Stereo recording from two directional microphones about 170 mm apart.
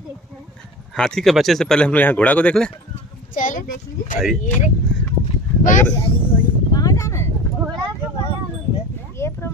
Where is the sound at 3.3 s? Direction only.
50° left (ahead or behind).